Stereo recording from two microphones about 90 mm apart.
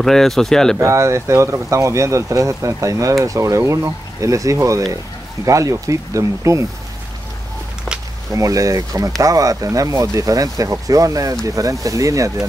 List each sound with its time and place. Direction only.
0.0 s speech: 5° left (ahead or behind)
0.7 s speech: 35° right (ahead or behind)
8.3 s speech: 40° right (ahead or behind)